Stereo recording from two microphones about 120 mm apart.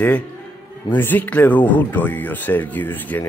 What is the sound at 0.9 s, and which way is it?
Speech, 15° left (ahead or behind).